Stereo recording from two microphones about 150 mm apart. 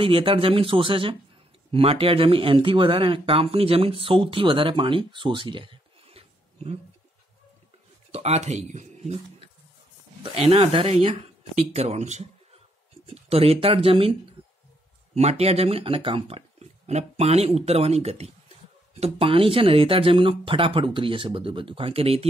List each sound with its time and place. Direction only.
0.0 s speech: 35° right (ahead or behind)
8.1 s speech: 45° right (ahead or behind)
15.1 s speech: 45° right (ahead or behind)